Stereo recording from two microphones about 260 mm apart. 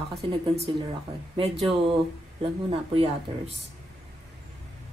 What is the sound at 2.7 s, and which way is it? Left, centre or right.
Speech, right.